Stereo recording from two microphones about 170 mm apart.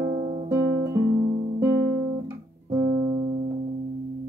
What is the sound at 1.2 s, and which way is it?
Music, 45° right (ahead or behind).